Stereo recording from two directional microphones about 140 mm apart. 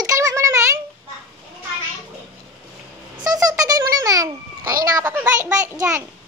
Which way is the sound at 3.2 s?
25° right (ahead or behind).